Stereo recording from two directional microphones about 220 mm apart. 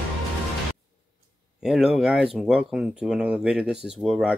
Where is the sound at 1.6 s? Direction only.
5° right (ahead or behind).